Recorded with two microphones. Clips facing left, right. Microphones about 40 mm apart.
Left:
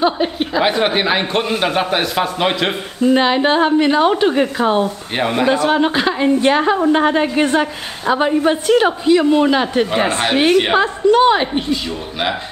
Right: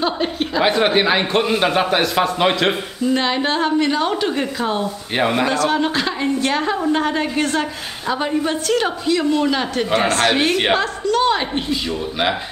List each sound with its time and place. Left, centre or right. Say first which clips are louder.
0.0 s a man's voice: left 4 dB; centre
3.0 s a woman's voice: left 7 dB; left
5.1 s a man's voice: even; centre
5.5 s a woman's voice: left 4 dB; centre
10.8 s a woman's voice: left 6 dB; left
11.5 s a man's voice: left 2 dB; centre